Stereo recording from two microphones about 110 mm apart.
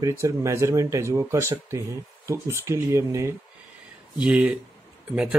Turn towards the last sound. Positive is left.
turn(degrees=-10)  # may be behind; listen again after turning